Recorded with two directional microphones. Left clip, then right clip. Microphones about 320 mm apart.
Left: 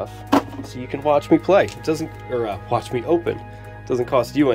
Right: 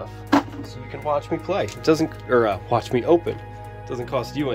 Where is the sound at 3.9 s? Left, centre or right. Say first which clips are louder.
Left 7 dB; centre.